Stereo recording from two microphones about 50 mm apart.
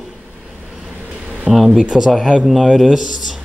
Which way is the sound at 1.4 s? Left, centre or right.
Centre.